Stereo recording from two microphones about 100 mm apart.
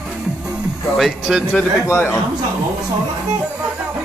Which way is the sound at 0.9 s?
5° right (ahead or behind).